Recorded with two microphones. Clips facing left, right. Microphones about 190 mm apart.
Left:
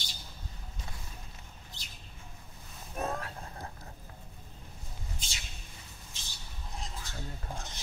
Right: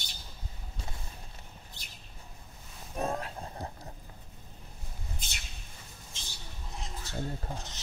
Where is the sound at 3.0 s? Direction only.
20° right (ahead or behind).